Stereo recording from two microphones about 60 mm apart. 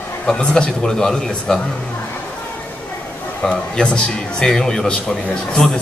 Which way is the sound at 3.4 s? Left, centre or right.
Centre.